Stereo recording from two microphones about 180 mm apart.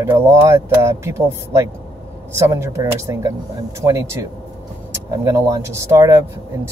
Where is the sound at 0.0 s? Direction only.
15° right (ahead or behind).